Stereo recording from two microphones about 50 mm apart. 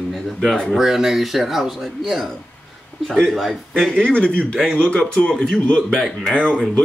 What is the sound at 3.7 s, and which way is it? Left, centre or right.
Speech, centre.